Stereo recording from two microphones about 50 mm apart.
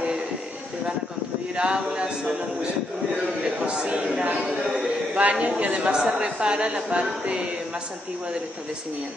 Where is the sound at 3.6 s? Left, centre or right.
Centre.